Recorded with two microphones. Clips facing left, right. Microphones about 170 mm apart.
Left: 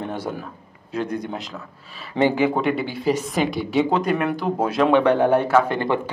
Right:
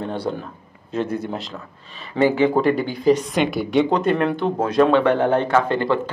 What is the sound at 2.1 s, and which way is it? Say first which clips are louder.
Speech: right 1 dB; 20° left (ahead or behind).